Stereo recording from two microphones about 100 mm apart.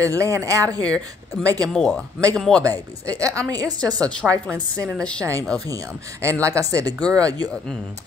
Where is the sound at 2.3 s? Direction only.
5° left (ahead or behind).